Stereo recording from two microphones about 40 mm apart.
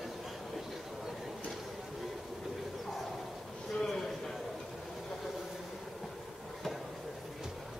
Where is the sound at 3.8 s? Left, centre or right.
Centre.